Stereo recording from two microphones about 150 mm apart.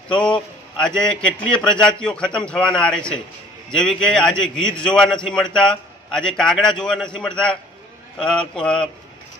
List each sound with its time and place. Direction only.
0.1 s a man's voice: 30° left (ahead or behind)
0.8 s a man's voice: 5° left (ahead or behind)